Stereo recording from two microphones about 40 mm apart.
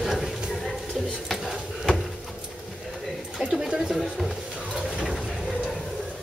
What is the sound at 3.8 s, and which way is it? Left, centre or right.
Speech, centre.